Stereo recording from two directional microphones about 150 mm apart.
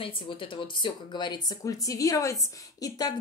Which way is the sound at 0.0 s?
35° left (ahead or behind).